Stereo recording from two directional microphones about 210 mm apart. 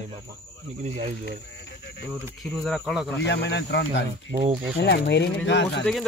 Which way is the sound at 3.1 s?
55° left (ahead or behind).